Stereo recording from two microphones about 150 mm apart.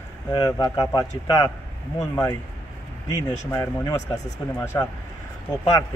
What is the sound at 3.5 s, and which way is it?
Speech, 20° left (ahead or behind).